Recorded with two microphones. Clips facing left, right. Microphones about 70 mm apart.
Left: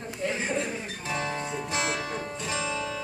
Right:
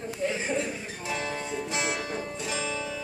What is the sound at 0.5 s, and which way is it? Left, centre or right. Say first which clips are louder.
Music: even; left.